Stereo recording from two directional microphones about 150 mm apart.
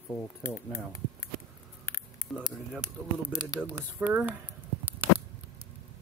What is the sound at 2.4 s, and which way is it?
Speech, 5° right (ahead or behind).